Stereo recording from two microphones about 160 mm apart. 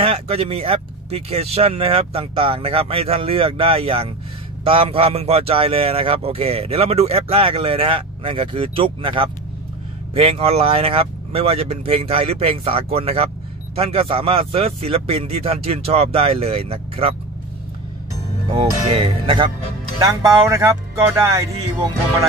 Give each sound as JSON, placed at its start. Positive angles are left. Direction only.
{"t": 0.0, "sound": "a man's voice", "side_deg": -35}
{"t": 18.5, "sound": "a man's voice", "side_deg": -40}
{"t": 20.0, "sound": "speech", "side_deg": -20}